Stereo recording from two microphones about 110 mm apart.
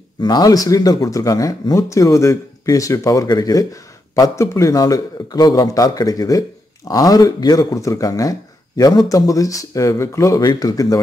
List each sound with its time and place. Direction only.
0.2 s a man's voice: 35° left (ahead or behind)